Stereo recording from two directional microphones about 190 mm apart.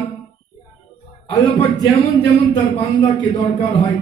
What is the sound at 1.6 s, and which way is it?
Speech, 15° left (ahead or behind).